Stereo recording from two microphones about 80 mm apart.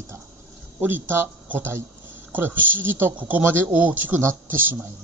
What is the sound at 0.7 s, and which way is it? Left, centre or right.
Speech, right.